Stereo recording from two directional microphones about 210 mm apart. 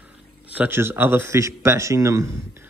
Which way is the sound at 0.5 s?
10° right (ahead or behind).